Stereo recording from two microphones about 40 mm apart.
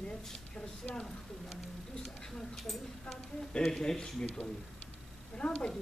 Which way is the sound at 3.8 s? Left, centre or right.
Centre.